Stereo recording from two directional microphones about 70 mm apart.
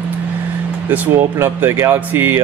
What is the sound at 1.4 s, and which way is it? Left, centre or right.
Speech, right.